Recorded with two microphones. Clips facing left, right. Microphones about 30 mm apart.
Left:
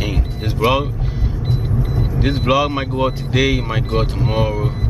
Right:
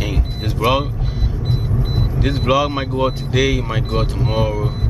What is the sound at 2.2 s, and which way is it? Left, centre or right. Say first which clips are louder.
Speech: even; centre.